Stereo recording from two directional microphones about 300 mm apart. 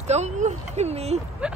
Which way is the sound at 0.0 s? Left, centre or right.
Right.